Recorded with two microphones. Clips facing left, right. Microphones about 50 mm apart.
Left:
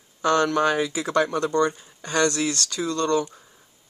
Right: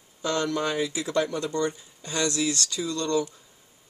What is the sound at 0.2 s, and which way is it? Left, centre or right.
Speech, left.